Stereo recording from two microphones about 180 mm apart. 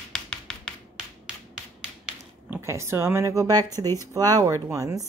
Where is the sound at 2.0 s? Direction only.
15° right (ahead or behind).